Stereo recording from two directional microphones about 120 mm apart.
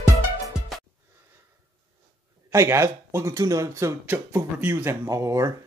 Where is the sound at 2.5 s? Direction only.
25° right (ahead or behind).